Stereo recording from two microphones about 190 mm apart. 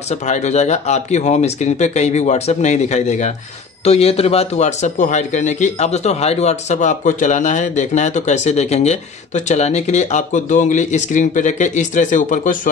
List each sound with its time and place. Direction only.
0.1 s a man's voice: 35° left (ahead or behind)